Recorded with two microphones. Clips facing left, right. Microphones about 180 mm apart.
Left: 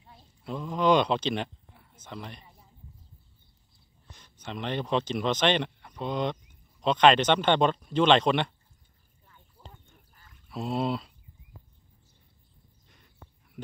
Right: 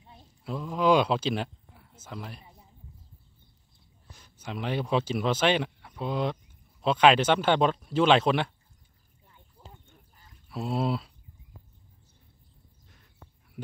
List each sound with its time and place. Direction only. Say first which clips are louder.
0.4 s a sound: even; centre (ahead or behind)
4.1 s speech: right 1 dB; 5° right (ahead or behind)
9.6 s livestock: even; 25° right (ahead or behind)
10.5 s speech: even; centre (ahead or behind)